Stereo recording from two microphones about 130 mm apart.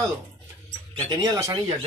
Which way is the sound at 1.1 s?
25° right (ahead or behind).